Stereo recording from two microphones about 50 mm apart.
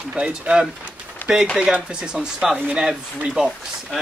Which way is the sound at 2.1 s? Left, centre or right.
Centre.